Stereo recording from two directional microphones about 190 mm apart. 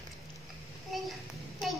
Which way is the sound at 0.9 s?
Centre (ahead or behind).